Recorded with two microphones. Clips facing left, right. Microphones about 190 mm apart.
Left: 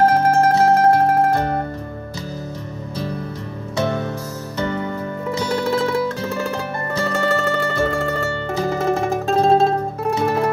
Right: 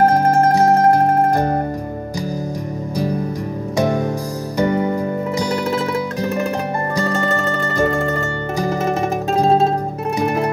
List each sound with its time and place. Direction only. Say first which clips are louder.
0.5 s music: right 1 dB; 15° right (ahead or behind)
3.7 s music: right 4 dB; 15° right (ahead or behind)
5.4 s zither: left 2 dB; 15° right (ahead or behind)
8.5 s music: even; 15° right (ahead or behind)